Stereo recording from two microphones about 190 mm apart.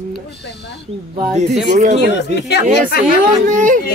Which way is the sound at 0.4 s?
65° left (ahead or behind).